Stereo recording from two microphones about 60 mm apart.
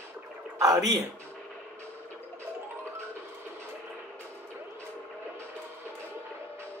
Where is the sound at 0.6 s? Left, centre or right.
Right.